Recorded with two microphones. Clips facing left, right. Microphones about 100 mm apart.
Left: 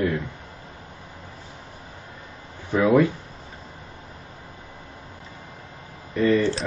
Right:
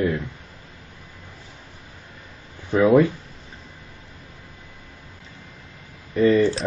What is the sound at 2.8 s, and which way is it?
Speech, 30° right (ahead or behind).